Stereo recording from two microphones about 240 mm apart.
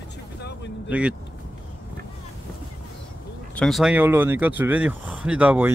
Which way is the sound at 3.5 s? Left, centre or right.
Centre.